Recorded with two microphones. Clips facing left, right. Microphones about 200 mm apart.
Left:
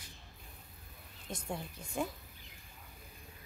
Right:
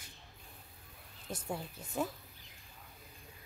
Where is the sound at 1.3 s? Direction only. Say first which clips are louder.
Right 1 dB; 5° right (ahead or behind).